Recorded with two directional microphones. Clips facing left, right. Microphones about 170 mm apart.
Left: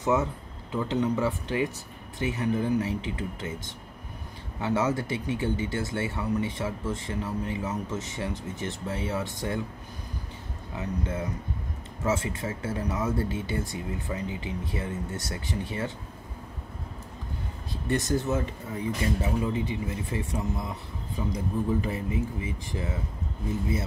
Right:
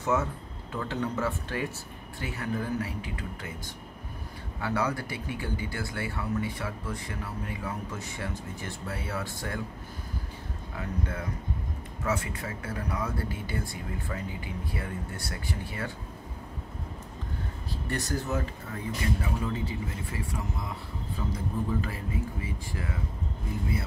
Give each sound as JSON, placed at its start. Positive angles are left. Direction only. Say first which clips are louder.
{"t": 0.0, "sound": "speech", "louder": "left 3 dB", "side_deg": 15}
{"t": 10.8, "sound": "speech", "louder": "left 3 dB", "side_deg": 20}
{"t": 17.8, "sound": "a man's voice", "louder": "left 6 dB", "side_deg": 20}